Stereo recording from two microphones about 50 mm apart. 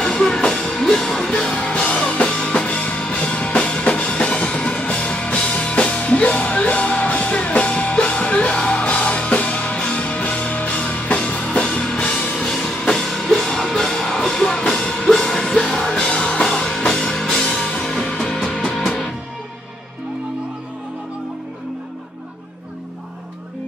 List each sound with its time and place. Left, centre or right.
0.0 s music: centre
12.4 s music: centre